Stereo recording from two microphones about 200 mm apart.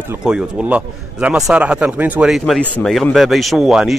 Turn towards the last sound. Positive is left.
turn(degrees=-5)  # may be behind; listen again after turning